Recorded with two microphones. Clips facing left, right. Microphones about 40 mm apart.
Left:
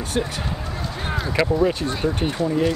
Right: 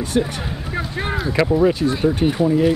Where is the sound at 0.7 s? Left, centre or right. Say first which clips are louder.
Right 5 dB; centre.